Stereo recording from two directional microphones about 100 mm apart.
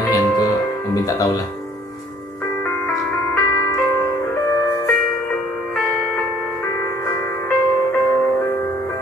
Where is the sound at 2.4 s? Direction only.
20° left (ahead or behind).